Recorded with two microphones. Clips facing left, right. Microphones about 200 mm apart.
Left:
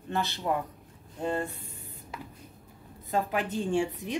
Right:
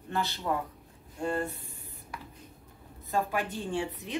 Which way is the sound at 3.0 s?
20° left (ahead or behind).